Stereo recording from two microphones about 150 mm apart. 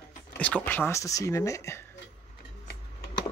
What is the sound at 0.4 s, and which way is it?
Speech, 10° left (ahead or behind).